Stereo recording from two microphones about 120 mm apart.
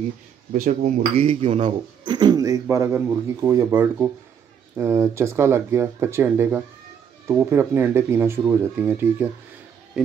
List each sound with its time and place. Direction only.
0.7 s speech: 80° right
1.2 s speech: 50° right (ahead or behind)
2.0 s speech: 40° right (ahead or behind); by 9.3 s 15° right (ahead or behind)